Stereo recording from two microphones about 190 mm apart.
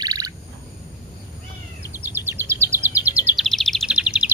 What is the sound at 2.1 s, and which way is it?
Bird vocalization, 10° right (ahead or behind).